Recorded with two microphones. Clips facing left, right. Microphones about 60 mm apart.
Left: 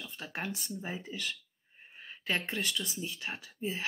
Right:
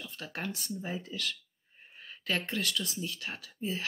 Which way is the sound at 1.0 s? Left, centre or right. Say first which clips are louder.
Right 1 dB; centre.